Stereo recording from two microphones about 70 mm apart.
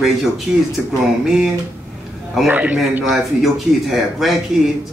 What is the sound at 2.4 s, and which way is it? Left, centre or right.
Speech, centre.